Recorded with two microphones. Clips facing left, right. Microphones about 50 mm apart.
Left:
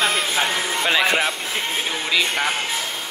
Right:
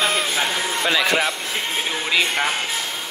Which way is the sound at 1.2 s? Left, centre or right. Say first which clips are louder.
Even; centre.